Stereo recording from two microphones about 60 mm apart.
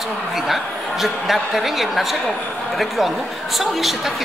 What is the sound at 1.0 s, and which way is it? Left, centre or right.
A woman's voice, centre.